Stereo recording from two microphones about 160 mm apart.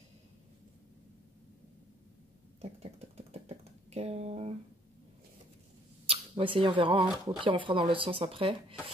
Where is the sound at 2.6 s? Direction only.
40° right (ahead or behind).